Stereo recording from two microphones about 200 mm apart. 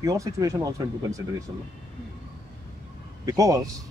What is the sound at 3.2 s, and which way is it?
Speech, 15° right (ahead or behind).